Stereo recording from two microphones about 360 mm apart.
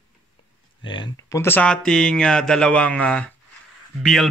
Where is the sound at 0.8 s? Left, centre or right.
Centre.